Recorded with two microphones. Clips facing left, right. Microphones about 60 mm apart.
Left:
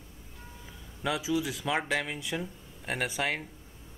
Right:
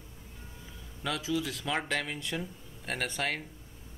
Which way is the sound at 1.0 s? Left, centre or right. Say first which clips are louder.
Left 3 dB; centre.